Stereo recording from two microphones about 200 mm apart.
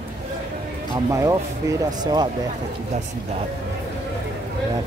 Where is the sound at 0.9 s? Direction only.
15° right (ahead or behind).